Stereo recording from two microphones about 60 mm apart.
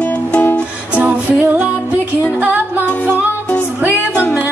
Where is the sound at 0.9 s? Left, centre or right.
Right.